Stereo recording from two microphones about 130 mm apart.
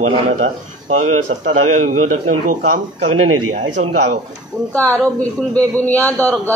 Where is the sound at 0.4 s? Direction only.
65° right (ahead or behind); by 2.5 s 80° right.